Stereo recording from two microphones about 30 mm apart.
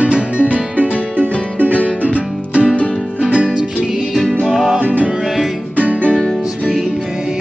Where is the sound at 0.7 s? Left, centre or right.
Right.